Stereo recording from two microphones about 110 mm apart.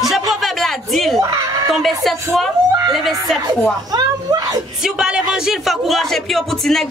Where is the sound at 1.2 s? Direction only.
30° right (ahead or behind).